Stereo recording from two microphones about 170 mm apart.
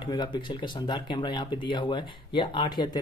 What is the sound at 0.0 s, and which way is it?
Speech, 25° left (ahead or behind).